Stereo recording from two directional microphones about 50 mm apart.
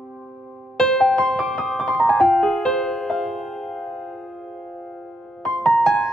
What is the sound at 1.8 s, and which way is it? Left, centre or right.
Piano, centre.